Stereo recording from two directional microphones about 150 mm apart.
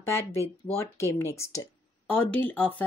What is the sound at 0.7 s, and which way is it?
Speech, 15° left (ahead or behind).